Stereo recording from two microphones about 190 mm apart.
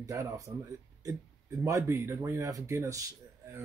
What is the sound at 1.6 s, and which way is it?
Speech, 15° right (ahead or behind).